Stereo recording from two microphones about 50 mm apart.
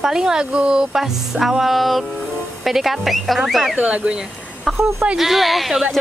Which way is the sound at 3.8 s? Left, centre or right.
Right.